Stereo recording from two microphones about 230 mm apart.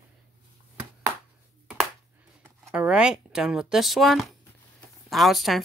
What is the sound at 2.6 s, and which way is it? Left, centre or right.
Speech, centre.